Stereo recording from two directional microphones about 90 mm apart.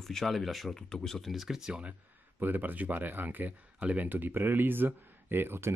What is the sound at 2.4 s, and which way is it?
Speech, 20° right (ahead or behind).